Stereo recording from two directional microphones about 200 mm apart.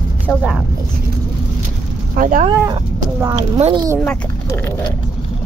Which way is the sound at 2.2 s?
40° right (ahead or behind).